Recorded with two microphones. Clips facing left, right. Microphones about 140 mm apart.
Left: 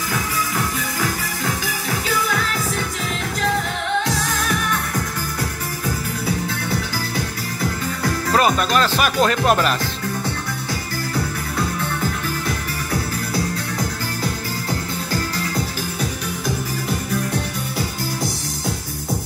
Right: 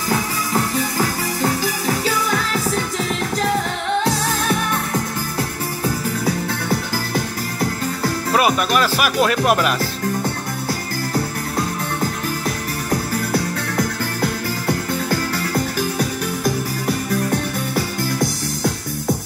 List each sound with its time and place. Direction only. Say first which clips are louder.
0.9 s music: right 3 dB; 35° right (ahead or behind)
8.3 s speech: even; 10° right (ahead or behind)